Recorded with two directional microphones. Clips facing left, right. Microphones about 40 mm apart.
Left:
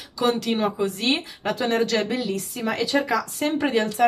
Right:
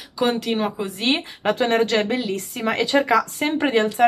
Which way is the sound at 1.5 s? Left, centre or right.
Right.